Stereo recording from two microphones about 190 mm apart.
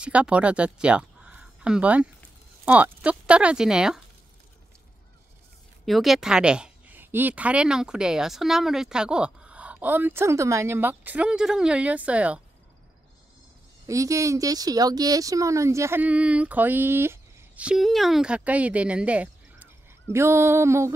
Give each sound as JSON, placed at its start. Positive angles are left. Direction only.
{"t": 0.0, "sound": "a woman's voice", "side_deg": -5}
{"t": 5.9, "sound": "a woman's voice", "side_deg": 0}
{"t": 13.8, "sound": "speech", "side_deg": -15}